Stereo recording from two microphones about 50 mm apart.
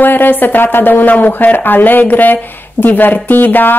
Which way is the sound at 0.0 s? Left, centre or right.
Left.